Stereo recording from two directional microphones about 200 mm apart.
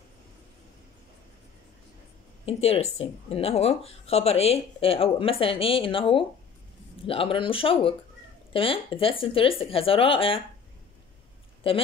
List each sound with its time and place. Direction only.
2.4 s speech: 30° left (ahead or behind)